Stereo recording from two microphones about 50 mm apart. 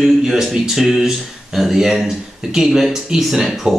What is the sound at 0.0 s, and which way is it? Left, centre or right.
Speech, centre.